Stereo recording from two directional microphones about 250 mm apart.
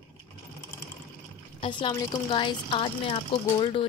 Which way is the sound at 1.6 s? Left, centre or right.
Centre.